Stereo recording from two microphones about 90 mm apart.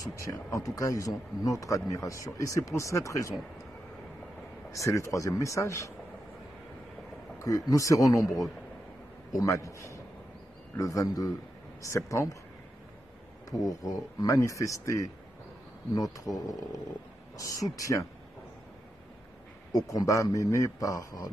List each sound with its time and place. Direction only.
0.0 s a man's voice: 40° left (ahead or behind)
4.7 s a man's voice: 35° left (ahead or behind)
7.3 s a man's voice: 40° left (ahead or behind)
9.3 s a man's voice: 40° left (ahead or behind)
13.5 s a man's voice: 40° left (ahead or behind)
19.7 s a man's voice: 45° left (ahead or behind)